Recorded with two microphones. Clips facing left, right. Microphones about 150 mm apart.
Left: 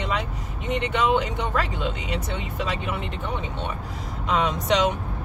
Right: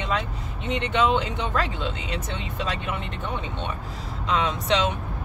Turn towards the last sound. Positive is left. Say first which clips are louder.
# left 1 dB
turn(degrees=10)  # may be behind; listen again after turning